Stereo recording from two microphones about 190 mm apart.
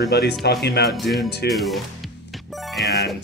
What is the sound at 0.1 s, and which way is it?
Speech, 55° left (ahead or behind).